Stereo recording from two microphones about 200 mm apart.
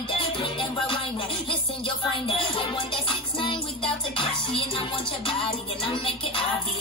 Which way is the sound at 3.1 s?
25° left (ahead or behind).